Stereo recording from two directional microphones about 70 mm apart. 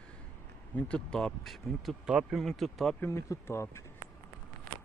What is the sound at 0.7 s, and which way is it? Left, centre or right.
Speech, centre.